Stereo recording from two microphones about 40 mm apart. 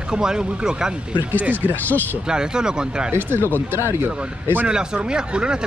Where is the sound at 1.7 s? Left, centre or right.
Left.